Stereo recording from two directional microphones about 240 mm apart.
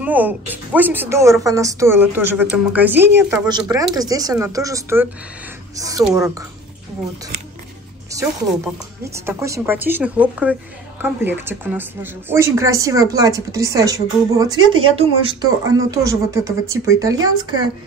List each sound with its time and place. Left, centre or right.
0.0 s a woman's voice: centre
6.0 s a woman's voice: centre
9.0 s a woman's voice: centre